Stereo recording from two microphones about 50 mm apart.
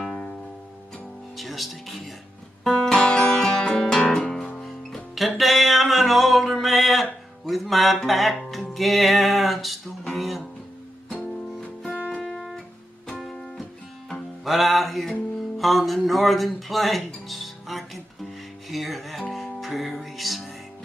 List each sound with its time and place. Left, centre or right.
1.3 s music: centre
2.6 s music: centre
11.8 s music: left
12.4 s music: centre
18.7 s speech: centre
19.3 s music: centre